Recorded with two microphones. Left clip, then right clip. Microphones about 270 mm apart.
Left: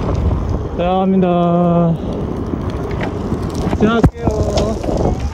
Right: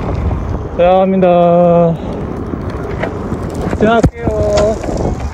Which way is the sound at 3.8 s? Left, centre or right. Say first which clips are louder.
Right 5 dB; centre.